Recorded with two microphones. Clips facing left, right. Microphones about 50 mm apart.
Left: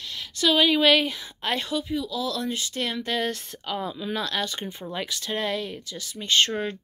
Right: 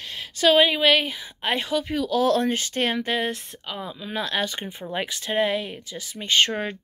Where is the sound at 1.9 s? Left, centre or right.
Right.